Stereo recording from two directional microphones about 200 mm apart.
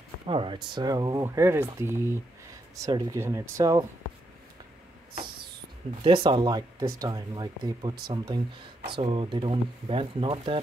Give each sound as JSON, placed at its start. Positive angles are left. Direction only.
{"t": 0.3, "sound": "speech", "side_deg": -25}
{"t": 6.0, "sound": "speech", "side_deg": -25}